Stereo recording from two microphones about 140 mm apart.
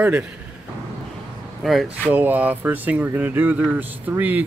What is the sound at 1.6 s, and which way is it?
Speech, centre (ahead or behind).